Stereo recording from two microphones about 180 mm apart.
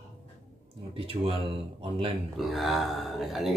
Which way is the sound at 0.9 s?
30° right (ahead or behind).